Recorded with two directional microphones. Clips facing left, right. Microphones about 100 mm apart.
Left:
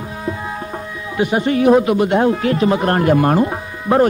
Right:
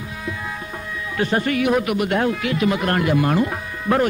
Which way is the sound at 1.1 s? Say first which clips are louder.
Left 4 dB; 15° left (ahead or behind).